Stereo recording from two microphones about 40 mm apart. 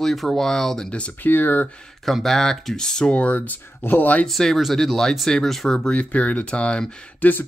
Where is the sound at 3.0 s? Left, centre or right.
Left.